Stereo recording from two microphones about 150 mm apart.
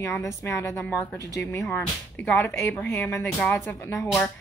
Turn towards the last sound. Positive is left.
turn(degrees=20)  # may be behind; listen again after turning